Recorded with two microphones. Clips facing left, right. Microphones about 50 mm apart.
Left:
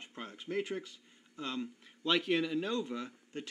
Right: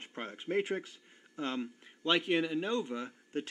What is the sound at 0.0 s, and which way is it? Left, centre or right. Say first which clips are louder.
Speech: right 4 dB; right.